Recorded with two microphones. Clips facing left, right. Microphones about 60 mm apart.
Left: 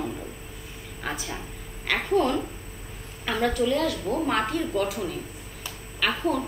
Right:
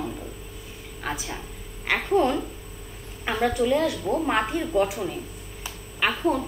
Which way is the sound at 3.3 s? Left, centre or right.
Centre.